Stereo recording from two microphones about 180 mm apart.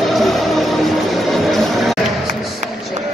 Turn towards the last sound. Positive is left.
turn(degrees=0)  # may be behind; listen again after turning